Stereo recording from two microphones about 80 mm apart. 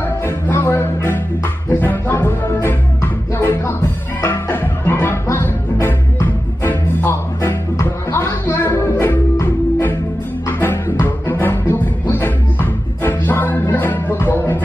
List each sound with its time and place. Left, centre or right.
0.5 s music: left